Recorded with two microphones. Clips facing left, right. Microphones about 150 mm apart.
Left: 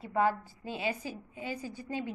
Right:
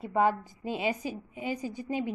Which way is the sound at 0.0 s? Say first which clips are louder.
Right 3 dB; 20° right (ahead or behind).